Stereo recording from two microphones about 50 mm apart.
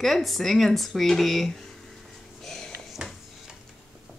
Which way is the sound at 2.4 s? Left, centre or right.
Centre.